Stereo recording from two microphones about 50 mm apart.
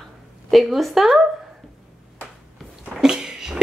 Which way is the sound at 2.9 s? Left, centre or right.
Centre.